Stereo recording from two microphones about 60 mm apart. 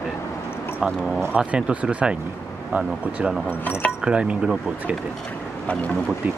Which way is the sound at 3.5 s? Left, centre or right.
Left.